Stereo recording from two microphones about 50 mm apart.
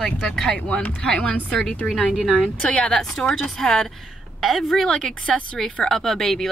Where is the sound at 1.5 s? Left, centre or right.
Centre.